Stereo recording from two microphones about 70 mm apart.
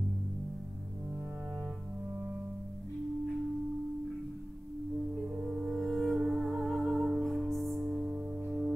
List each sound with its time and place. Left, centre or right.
5.3 s music: centre
5.8 s music: centre
8.0 s music: right